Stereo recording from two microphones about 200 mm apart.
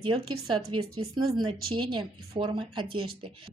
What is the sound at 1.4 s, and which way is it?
A woman's voice, 25° right (ahead or behind).